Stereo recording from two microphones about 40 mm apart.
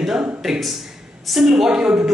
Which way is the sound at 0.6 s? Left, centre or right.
Centre.